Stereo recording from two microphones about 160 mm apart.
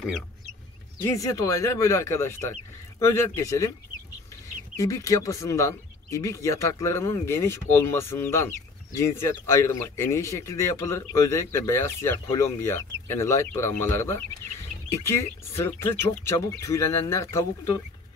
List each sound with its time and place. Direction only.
1.0 s speech: 20° left (ahead or behind)
4.7 s speech: 20° left (ahead or behind)